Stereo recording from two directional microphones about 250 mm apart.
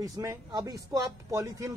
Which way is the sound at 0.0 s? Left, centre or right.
Centre.